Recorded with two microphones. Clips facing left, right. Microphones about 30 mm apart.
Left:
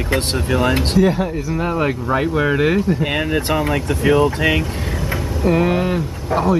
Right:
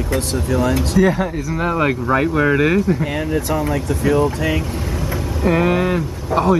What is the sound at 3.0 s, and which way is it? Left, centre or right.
Speech, left.